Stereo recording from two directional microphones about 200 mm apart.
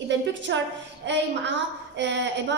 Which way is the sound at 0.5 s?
65° right (ahead or behind).